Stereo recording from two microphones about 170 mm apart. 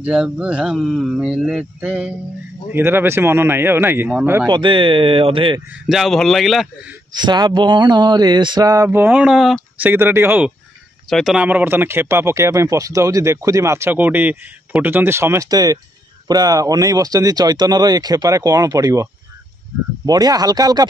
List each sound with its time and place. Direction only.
0.0 s speech: 5° right (ahead or behind)
4.5 s speech: 25° right (ahead or behind)
5.7 s speech: centre (ahead or behind)
7.1 s speech: 25° right (ahead or behind)
11.1 s speech: centre (ahead or behind); by 19.0 s 20° right (ahead or behind)
20.1 s speech: 20° right (ahead or behind)